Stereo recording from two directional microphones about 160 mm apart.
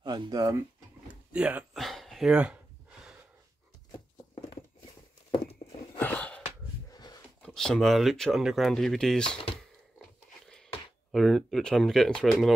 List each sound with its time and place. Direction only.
0.0 s speech: 25° right (ahead or behind)
1.0 s a sound: 10° right (ahead or behind)
5.9 s a sound: 10° left (ahead or behind)
6.9 s dog: 25° left (ahead or behind)
7.4 s speech: 5° left (ahead or behind)
11.1 s speech: centre (ahead or behind)